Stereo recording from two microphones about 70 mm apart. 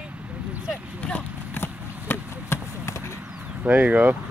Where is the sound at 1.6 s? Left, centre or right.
Left.